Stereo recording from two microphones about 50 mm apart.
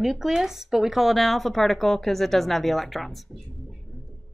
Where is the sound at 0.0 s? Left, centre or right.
Centre.